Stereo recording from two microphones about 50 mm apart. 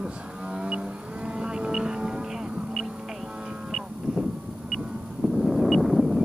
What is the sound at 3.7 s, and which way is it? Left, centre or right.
Vehicle, centre.